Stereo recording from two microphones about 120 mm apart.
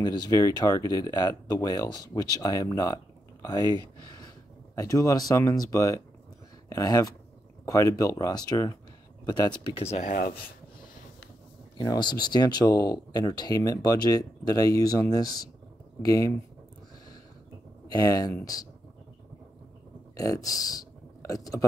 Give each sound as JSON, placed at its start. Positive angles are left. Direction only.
{"t": 0.0, "sound": "speech", "side_deg": 35}
{"t": 4.7, "sound": "speech", "side_deg": 30}
{"t": 9.8, "sound": "speech", "side_deg": 60}
{"t": 11.8, "sound": "speech", "side_deg": 35}
{"t": 17.8, "sound": "speech", "side_deg": 30}
{"t": 20.2, "sound": "speech", "side_deg": 30}